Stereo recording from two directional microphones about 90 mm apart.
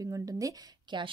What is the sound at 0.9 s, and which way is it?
Speech, 60° right (ahead or behind).